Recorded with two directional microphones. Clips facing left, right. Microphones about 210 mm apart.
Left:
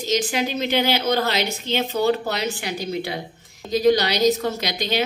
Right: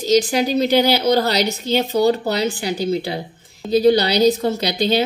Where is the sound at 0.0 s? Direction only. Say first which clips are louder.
Right 6 dB; 35° right (ahead or behind).